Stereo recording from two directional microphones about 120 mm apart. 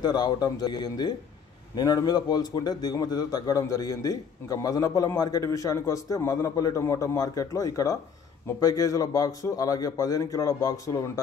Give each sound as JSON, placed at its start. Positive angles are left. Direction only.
{"t": 0.0, "sound": "a man's voice", "side_deg": 35}